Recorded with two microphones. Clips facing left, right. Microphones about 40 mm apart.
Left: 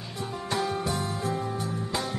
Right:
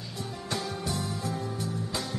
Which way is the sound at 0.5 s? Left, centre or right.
Left.